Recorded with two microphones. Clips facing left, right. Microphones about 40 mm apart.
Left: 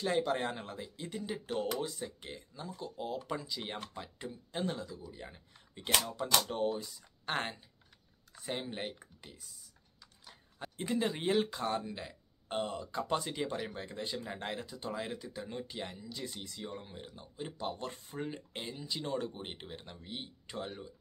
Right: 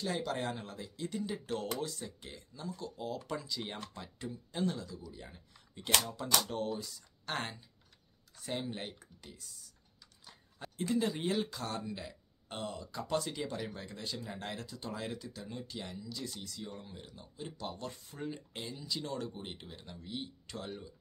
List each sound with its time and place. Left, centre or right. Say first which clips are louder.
0.0 s speech: left 4 dB; left